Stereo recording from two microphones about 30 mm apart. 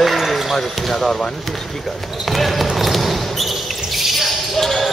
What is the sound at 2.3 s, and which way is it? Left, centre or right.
Speech, centre.